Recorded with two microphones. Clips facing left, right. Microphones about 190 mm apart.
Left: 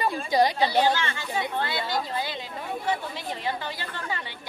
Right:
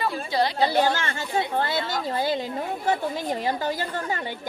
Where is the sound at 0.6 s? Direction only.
45° right (ahead or behind).